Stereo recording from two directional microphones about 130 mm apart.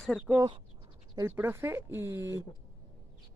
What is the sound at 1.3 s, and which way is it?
Speech, 15° right (ahead or behind).